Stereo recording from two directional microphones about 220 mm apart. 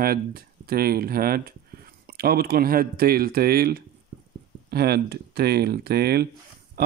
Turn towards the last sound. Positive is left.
turn(degrees=-45)  # may be behind; listen again after turning